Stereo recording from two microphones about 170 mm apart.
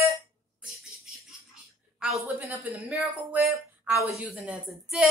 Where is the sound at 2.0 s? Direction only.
5° right (ahead or behind).